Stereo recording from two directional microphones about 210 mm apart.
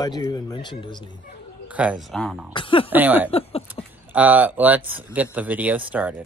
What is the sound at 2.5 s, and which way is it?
Speech, 25° left (ahead or behind).